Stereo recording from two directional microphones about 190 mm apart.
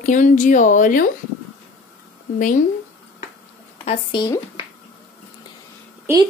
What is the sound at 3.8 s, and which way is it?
Speech, 25° left (ahead or behind).